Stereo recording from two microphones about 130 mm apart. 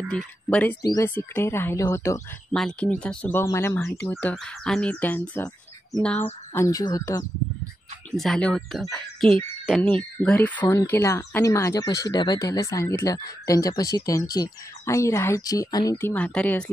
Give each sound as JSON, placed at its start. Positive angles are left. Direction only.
{"t": 0.1, "sound": "speech", "side_deg": 10}
{"t": 0.8, "sound": "speech", "side_deg": 25}
{"t": 2.5, "sound": "speech", "side_deg": 5}
{"t": 8.2, "sound": "speech", "side_deg": 5}
{"t": 10.7, "sound": "speech", "side_deg": 20}
{"t": 16.0, "sound": "speech", "side_deg": 15}